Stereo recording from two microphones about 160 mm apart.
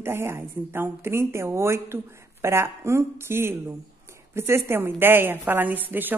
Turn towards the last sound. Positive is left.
turn(degrees=-10)  # may be behind; listen again after turning